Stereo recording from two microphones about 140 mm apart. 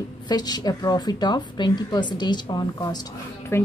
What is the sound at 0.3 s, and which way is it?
A woman's voice, 30° left (ahead or behind).